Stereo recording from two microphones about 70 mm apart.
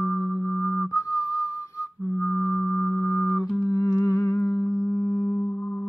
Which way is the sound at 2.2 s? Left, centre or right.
Left.